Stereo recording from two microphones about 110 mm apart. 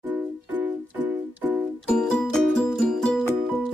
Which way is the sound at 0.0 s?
15° right (ahead or behind).